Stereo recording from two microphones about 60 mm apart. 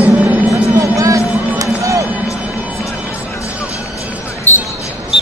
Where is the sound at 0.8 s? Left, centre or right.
Right.